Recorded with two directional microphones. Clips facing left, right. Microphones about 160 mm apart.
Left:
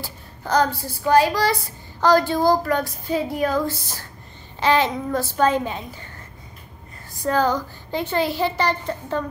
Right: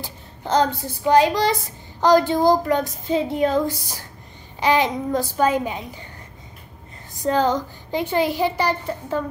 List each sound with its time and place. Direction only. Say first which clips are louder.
0.0 s speech: right 1 dB; 20° right (ahead or behind)
3.7 s a child's voice: even; 15° right (ahead or behind)
7.2 s a child's voice: right 1 dB; 20° right (ahead or behind)